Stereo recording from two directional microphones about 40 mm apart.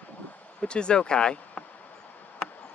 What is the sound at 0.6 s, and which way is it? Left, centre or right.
Speech, left.